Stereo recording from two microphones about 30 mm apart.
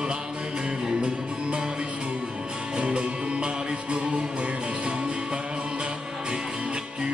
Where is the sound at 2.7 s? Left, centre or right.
Right.